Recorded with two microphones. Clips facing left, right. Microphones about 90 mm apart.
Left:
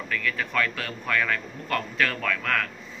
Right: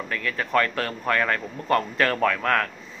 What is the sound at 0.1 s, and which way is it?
A man's voice, 35° right (ahead or behind).